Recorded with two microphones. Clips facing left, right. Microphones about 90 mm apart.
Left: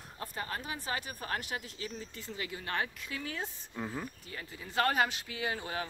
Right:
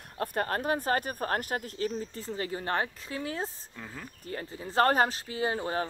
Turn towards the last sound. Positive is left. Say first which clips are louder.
# right 6 dB
turn(degrees=-35)  # may be behind; listen again after turning